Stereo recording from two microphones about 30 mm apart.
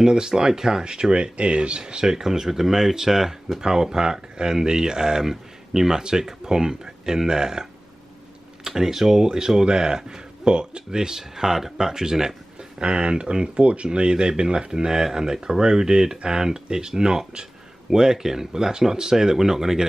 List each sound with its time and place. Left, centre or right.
0.0 s speech: right
1.1 s speech: right
1.9 s speech: right
8.6 s speech: centre
12.7 s speech: right
14.9 s speech: centre